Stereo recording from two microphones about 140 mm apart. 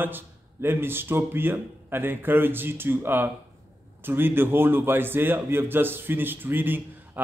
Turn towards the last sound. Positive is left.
turn(degrees=-15)  # may be behind; listen again after turning